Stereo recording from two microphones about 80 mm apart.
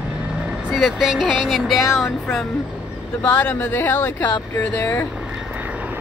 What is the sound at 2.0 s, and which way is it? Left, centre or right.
Speech, centre.